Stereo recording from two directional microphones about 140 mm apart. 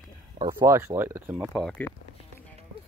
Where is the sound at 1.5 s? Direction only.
5° left (ahead or behind).